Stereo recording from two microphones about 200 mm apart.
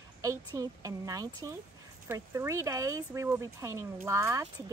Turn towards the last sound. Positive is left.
turn(degrees=-15)  # may be behind; listen again after turning